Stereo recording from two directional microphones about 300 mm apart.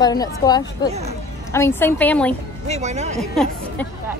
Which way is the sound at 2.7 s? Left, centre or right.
Right.